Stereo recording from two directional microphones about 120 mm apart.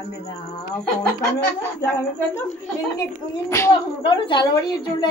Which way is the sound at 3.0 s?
25° left (ahead or behind).